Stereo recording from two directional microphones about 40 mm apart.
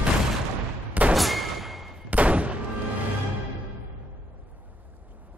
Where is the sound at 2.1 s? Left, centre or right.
Right.